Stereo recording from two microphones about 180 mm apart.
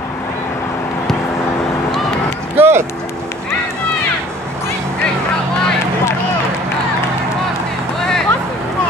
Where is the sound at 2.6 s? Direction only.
15° right (ahead or behind).